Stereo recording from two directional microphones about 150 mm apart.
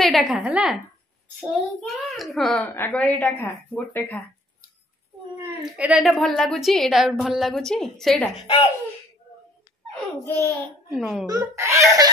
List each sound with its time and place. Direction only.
0.0 s a woman's voice: centre (ahead or behind)
2.6 s speech: 10° left (ahead or behind)
5.8 s a woman's voice: 5° right (ahead or behind)
10.2 s speech: 20° left (ahead or behind)
10.9 s a woman's voice: 5° right (ahead or behind)
11.2 s a child's voice: 20° right (ahead or behind)